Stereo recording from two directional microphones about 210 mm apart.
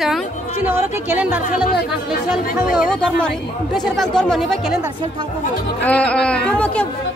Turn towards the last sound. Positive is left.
turn(degrees=5)  # may be behind; listen again after turning